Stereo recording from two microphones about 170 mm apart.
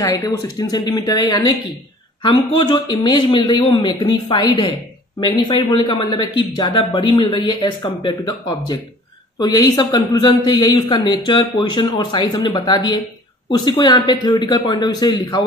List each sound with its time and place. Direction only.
0.0 s speech: 20° left (ahead or behind)